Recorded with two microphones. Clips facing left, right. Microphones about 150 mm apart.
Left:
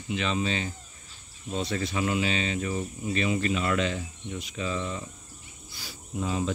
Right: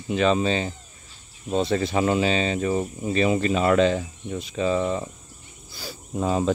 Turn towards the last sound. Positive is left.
turn(degrees=-40)  # may be behind; listen again after turning